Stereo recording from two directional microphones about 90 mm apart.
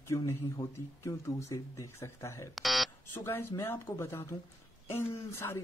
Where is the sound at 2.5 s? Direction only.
Centre (ahead or behind).